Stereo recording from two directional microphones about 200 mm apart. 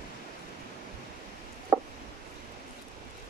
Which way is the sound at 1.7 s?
15° right (ahead or behind).